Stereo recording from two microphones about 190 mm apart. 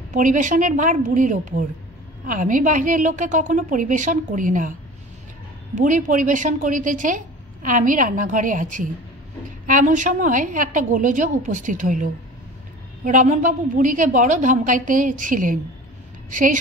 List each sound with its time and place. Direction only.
0.1 s a woman's voice: 40° right (ahead or behind)
5.8 s a woman's voice: 45° right (ahead or behind)